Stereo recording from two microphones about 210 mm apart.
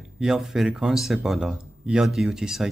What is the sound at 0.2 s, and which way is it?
Speech, centre (ahead or behind).